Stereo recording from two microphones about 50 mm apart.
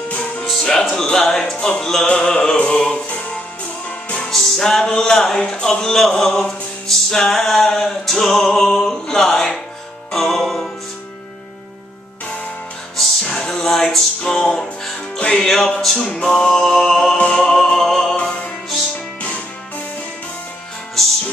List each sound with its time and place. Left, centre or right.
0.5 s music: centre
0.9 s speech: centre
1.4 s music: centre
4.3 s music: centre
13.2 s music: centre
15.4 s music: centre
17.2 s music: centre
17.6 s music: centre
21.0 s music: centre